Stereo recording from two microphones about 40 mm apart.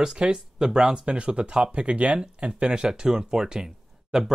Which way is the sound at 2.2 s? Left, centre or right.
Centre.